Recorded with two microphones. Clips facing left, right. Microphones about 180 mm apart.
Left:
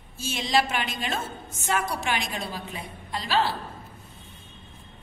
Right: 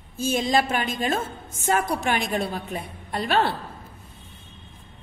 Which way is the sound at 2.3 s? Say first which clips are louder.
Right 7 dB; 55° right (ahead or behind).